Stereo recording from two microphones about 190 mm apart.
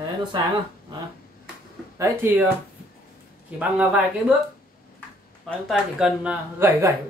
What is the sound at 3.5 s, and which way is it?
Speech, 5° right (ahead or behind).